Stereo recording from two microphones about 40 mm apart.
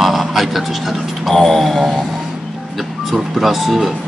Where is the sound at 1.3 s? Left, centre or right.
Centre.